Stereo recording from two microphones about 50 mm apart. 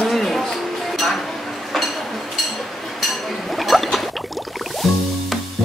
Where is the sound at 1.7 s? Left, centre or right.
Centre.